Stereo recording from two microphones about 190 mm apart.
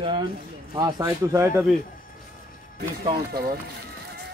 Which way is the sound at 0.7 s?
20° right (ahead or behind).